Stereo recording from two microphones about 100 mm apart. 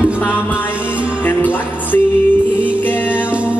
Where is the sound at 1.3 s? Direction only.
20° left (ahead or behind).